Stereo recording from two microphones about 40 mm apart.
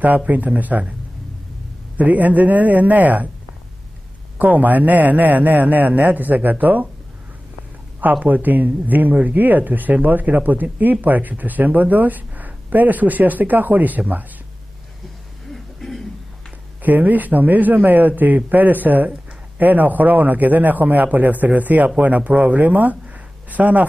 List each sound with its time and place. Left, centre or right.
0.6 s speech: right
2.0 s speech: right
4.4 s speech: right
8.2 s speech: right
15.5 s throat clearing: centre
16.8 s speech: right